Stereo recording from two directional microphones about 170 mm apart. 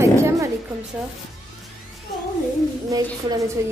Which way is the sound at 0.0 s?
20° right (ahead or behind).